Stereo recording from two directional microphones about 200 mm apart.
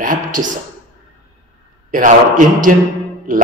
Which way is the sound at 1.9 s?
40° right (ahead or behind).